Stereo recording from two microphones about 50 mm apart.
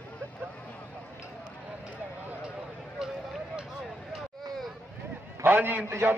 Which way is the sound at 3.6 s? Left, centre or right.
Centre.